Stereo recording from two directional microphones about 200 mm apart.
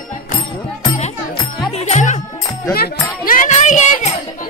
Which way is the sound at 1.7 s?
35° left (ahead or behind).